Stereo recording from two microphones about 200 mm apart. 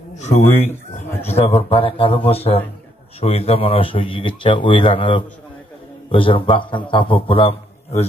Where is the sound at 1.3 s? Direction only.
30° left (ahead or behind).